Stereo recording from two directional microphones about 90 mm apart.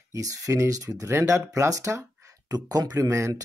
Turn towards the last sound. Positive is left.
turn(degrees=-35)  # may be behind; listen again after turning